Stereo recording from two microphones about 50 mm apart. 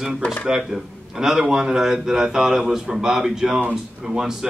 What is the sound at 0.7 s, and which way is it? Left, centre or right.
Speech, right.